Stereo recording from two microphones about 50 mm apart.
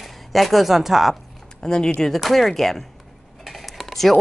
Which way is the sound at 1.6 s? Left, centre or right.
Centre.